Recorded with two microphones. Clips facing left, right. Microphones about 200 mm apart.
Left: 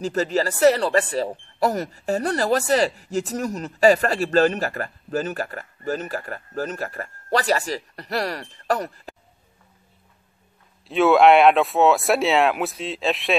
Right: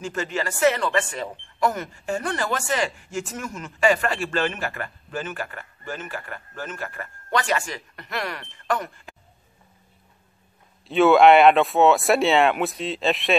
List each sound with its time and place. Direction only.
0.0 s speech: 35° left (ahead or behind)
10.9 s speech: centre (ahead or behind)